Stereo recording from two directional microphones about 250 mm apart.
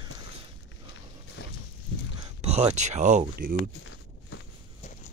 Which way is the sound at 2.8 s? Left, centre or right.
Right.